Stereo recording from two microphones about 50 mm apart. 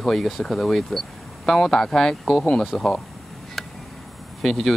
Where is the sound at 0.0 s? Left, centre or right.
Centre.